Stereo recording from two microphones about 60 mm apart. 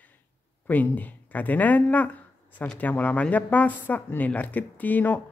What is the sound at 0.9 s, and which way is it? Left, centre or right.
A woman's voice, left.